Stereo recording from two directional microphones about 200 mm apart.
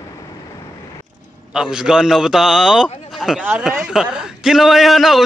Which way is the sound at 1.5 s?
5° right (ahead or behind).